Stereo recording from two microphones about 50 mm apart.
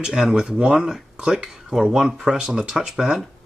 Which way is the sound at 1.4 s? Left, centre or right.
Centre.